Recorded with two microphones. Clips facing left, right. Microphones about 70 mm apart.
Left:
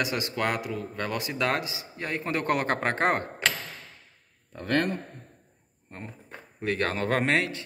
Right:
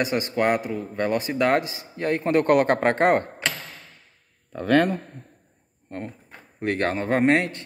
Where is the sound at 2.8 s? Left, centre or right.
Right.